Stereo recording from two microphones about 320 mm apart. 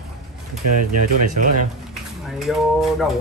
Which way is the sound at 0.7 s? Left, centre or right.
Right.